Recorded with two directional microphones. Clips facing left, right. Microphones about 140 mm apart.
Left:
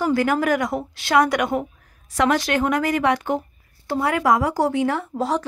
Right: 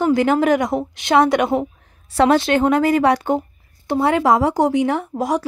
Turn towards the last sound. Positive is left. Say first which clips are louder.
# right 3 dB
turn(degrees=-15)  # may be behind; listen again after turning